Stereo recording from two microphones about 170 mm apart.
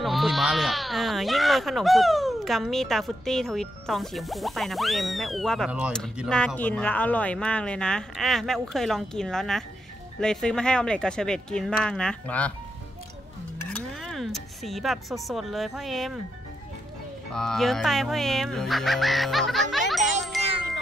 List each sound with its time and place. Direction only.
0.0 s speech: centre (ahead or behind)
14.0 s speech: centre (ahead or behind)
17.3 s speech: 5° left (ahead or behind)
19.9 s music: centre (ahead or behind)